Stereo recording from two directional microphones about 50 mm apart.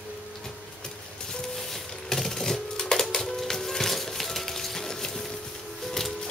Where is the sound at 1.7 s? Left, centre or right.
Centre.